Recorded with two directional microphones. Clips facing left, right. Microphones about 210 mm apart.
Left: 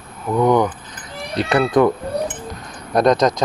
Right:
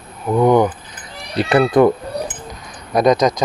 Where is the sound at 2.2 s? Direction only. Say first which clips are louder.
Left 3 dB; centre (ahead or behind).